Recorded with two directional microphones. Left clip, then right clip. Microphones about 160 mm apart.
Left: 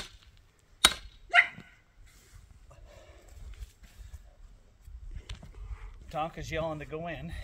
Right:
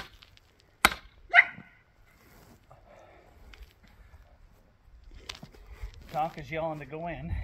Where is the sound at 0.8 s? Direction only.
20° left (ahead or behind).